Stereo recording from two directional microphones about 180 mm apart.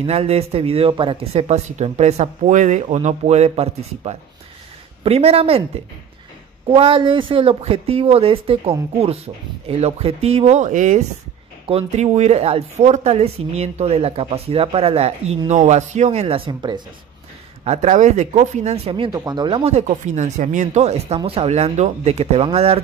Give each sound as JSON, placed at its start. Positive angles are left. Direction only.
{"t": 0.0, "sound": "speech", "side_deg": -35}
{"t": 6.7, "sound": "speech", "side_deg": -30}
{"t": 17.6, "sound": "speech", "side_deg": -45}